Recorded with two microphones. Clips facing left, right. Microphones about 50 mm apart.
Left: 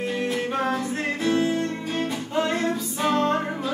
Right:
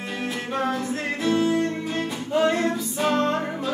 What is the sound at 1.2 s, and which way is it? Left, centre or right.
Music, centre.